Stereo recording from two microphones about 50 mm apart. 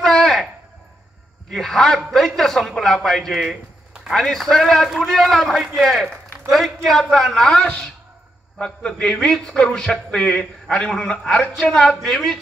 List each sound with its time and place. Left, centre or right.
0.0 s a sound: centre
1.5 s a man's voice: centre
12.1 s a man's voice: centre